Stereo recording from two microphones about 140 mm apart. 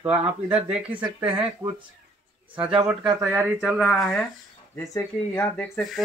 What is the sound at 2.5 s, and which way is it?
Speech, 10° right (ahead or behind).